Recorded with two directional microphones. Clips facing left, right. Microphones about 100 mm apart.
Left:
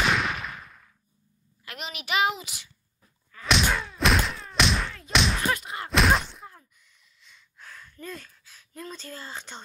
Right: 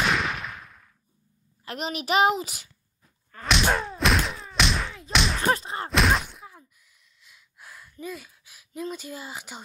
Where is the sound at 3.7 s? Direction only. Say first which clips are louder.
Right 4 dB; 35° right (ahead or behind).